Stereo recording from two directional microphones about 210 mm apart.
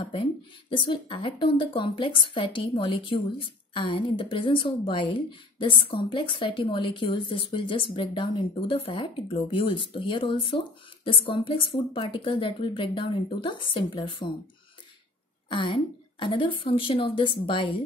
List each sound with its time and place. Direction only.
0.7 s a woman's voice: 25° left (ahead or behind)
15.5 s a woman's voice: 25° left (ahead or behind)